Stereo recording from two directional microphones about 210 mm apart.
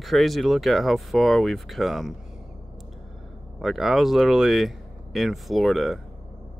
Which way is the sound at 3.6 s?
Centre (ahead or behind).